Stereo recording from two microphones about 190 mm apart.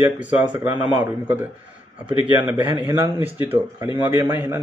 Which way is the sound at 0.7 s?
25° right (ahead or behind).